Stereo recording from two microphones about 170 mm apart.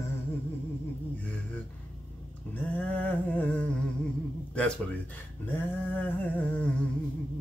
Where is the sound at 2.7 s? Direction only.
10° left (ahead or behind).